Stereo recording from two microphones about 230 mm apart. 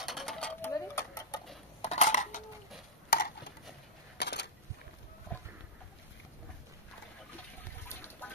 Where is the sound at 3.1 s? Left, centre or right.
Left.